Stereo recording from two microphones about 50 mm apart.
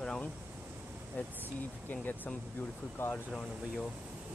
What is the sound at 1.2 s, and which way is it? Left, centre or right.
Speech, left.